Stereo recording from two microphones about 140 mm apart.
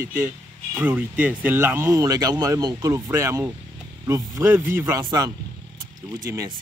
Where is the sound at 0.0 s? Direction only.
15° right (ahead or behind).